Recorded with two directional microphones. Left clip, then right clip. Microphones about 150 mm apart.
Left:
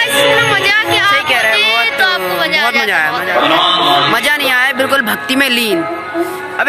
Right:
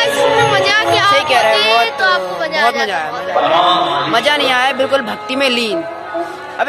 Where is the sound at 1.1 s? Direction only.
Centre (ahead or behind).